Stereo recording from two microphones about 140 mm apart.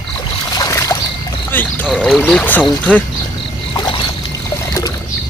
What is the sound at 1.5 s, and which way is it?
Boat, 15° left (ahead or behind).